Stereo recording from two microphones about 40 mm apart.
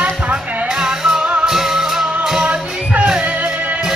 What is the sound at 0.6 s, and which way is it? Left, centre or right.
Music, centre.